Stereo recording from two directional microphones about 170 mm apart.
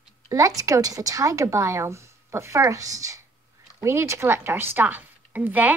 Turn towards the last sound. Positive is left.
turn(degrees=-10)  # may be behind; listen again after turning